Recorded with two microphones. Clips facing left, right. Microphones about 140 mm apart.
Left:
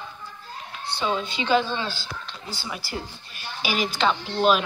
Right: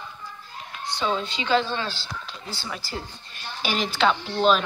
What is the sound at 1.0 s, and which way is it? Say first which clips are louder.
A woman's voice: even; 5° left (ahead or behind).